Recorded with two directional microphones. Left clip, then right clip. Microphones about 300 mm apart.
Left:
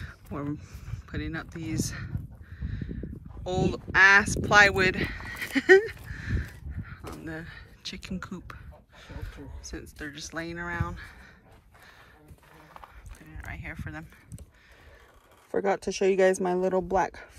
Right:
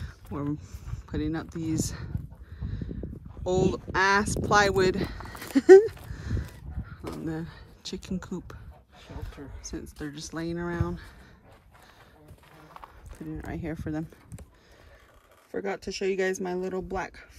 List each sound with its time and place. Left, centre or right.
0.0 s speech: centre
2.6 s a sound: centre
3.4 s speech: centre
9.6 s speech: centre
13.3 s speech: centre
15.5 s speech: centre